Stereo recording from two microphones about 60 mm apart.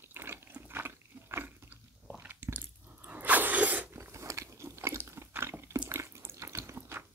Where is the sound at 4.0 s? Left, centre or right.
Right.